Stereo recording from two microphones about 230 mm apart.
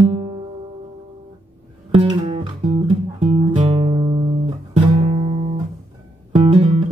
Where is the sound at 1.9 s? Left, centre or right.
Right.